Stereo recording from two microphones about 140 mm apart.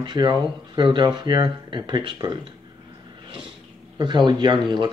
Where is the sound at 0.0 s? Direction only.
30° right (ahead or behind).